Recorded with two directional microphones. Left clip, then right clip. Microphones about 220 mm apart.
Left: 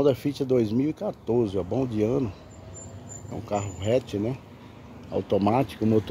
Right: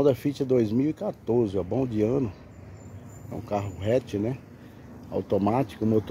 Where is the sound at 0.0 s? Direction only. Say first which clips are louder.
Even; 5° right (ahead or behind).